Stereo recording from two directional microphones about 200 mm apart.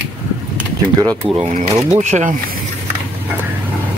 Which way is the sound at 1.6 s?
35° right (ahead or behind).